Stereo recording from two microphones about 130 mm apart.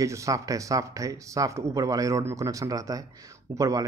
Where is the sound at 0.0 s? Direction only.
25° right (ahead or behind).